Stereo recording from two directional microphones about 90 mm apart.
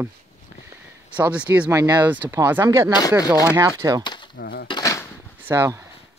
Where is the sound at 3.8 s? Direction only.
35° right (ahead or behind).